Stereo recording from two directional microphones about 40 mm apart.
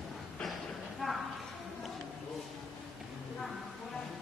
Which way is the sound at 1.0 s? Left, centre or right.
Centre.